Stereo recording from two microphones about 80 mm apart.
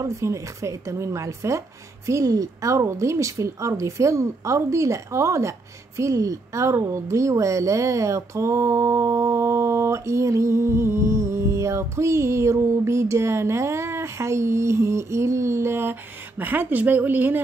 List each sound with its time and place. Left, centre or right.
0.0 s a woman's voice: right